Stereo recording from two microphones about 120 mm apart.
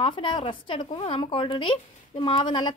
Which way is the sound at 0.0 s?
45° left (ahead or behind).